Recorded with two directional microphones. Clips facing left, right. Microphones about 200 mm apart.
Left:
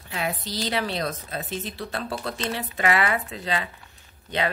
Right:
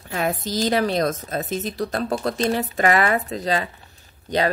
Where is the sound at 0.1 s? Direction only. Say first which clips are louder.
Right 6 dB; 45° right (ahead or behind).